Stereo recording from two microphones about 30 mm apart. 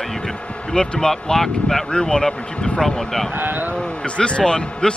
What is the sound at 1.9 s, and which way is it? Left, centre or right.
Speech, left.